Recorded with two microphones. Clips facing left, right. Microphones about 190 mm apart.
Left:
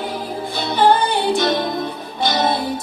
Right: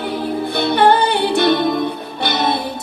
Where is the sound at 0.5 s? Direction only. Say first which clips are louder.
Right 2 dB; 60° right (ahead or behind).